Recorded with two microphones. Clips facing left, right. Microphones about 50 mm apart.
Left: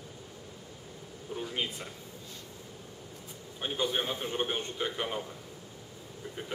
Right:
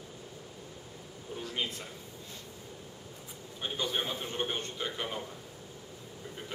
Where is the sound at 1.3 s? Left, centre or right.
Centre.